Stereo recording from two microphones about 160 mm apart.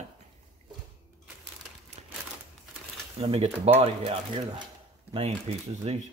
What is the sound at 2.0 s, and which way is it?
Crumpling, 40° right (ahead or behind).